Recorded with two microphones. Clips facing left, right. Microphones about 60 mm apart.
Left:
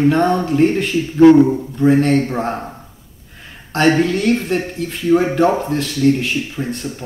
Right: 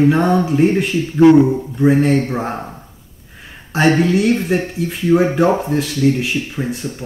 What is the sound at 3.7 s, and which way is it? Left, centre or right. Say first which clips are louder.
Speech: right 1 dB; centre.